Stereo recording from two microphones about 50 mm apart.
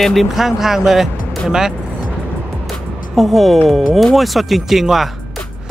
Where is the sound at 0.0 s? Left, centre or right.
Centre.